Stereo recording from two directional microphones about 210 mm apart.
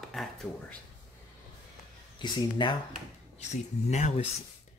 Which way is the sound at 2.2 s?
20° left (ahead or behind).